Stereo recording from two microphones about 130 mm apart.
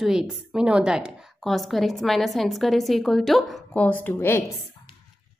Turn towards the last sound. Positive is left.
turn(degrees=20)  # may be behind; listen again after turning